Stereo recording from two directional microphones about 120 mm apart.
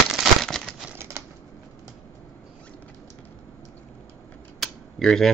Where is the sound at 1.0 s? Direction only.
20° right (ahead or behind).